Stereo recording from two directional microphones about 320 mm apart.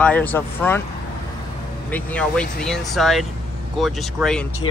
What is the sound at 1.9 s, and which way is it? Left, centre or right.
Speech, centre.